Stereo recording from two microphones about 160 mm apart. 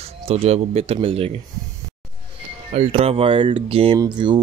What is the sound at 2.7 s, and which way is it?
Speech, 40° right (ahead or behind).